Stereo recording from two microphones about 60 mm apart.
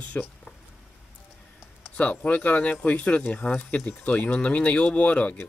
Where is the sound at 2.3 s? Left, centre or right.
Left.